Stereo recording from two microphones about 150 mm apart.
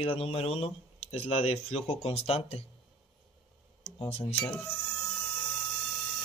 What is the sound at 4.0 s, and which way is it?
Speech, 40° left (ahead or behind).